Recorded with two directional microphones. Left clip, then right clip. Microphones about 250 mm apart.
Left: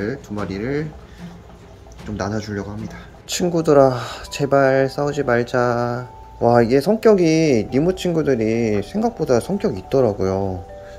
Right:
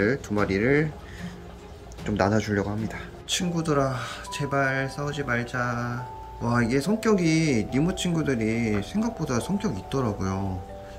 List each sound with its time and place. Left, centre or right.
0.0 s speech: centre
2.0 s speech: centre
3.3 s speech: centre